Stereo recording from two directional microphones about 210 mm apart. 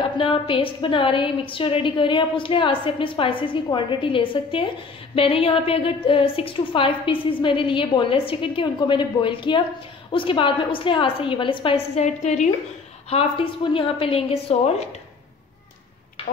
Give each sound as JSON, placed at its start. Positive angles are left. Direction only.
{"t": 0.0, "sound": "a woman's voice", "side_deg": 25}